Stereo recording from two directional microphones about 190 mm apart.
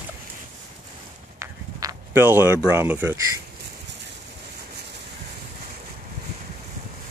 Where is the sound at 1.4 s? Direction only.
20° right (ahead or behind).